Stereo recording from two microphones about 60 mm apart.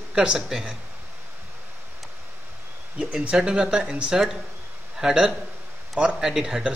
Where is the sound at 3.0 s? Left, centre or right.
Centre.